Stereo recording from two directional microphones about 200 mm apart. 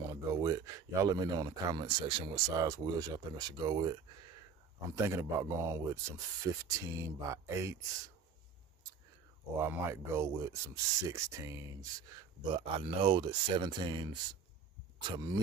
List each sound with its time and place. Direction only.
0.1 s speech: 15° right (ahead or behind)
5.0 s speech: 15° right (ahead or behind)
9.6 s speech: 10° right (ahead or behind)
12.5 s speech: 25° right (ahead or behind)